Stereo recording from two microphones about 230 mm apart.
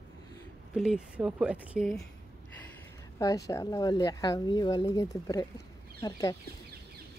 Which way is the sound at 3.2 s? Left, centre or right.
Centre.